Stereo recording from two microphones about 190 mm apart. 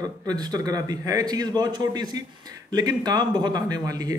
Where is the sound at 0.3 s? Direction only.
20° right (ahead or behind).